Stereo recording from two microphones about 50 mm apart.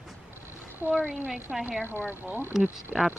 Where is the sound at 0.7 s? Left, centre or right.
Right.